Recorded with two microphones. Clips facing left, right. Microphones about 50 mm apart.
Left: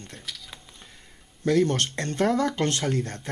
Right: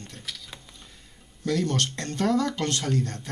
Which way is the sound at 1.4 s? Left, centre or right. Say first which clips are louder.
Left 4 dB; left.